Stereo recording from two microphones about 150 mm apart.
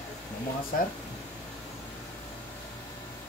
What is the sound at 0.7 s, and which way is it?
Speech, 70° left (ahead or behind).